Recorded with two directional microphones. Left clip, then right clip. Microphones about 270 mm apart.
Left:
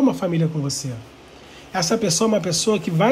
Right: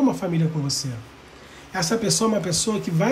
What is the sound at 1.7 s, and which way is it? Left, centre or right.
Speech, centre.